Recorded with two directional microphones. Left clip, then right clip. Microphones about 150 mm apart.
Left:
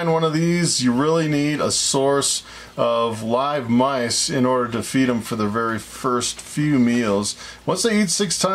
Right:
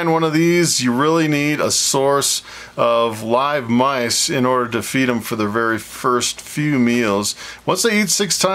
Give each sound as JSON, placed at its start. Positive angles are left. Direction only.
{"t": 0.0, "sound": "speech", "side_deg": -25}